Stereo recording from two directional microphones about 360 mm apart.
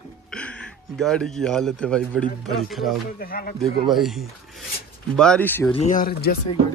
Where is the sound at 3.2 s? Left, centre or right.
Left.